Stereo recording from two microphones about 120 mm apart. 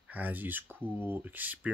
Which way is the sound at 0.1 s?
15° right (ahead or behind).